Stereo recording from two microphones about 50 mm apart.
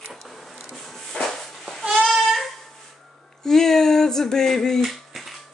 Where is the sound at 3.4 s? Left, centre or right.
Centre.